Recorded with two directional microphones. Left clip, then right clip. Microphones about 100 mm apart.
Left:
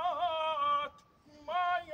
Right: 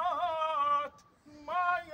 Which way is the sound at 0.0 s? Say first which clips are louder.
Right 1 dB; 5° left (ahead or behind).